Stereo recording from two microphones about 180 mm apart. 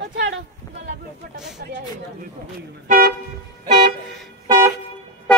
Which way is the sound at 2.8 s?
55° right (ahead or behind).